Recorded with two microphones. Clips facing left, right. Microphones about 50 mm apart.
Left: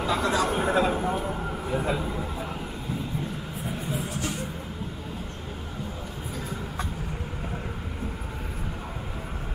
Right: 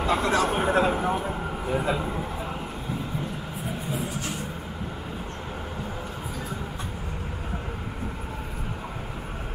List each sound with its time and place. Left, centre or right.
0.0 s a sound: right
0.7 s vehicle: right
1.3 s vehicle: centre
1.8 s speech: right